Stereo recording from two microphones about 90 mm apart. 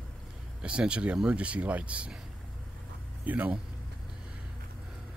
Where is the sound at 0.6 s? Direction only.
10° right (ahead or behind).